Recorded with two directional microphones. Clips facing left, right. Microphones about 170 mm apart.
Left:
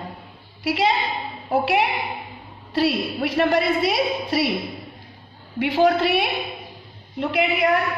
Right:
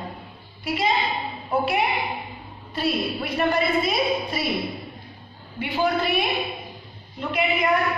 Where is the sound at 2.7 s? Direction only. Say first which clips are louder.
Left 4 dB; 85° left.